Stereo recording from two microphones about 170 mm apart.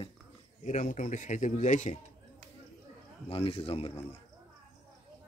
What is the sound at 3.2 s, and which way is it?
Speech, 35° left (ahead or behind).